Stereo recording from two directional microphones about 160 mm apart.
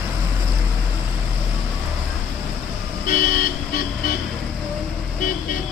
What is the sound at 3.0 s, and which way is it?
Vehicle, 60° left (ahead or behind).